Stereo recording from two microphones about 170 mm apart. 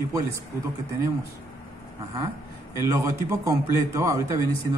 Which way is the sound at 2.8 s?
15° right (ahead or behind).